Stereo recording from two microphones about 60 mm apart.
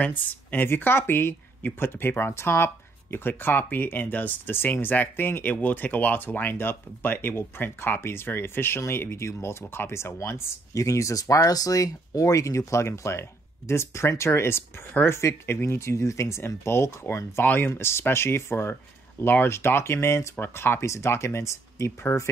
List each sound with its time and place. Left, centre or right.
0.0 s speech: left
10.7 s speech: left
17.4 s speech: left
17.6 s speech: left